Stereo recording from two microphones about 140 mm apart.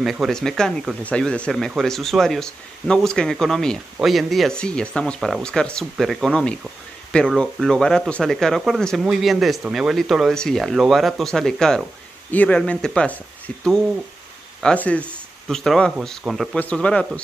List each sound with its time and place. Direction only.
0.0 s speech: centre (ahead or behind)
14.6 s speech: 10° left (ahead or behind)